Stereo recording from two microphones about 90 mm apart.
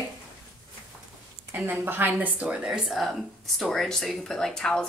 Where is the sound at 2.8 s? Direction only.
Centre (ahead or behind).